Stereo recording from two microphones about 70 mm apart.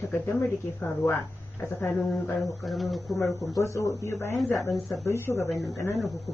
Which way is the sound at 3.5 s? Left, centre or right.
Left.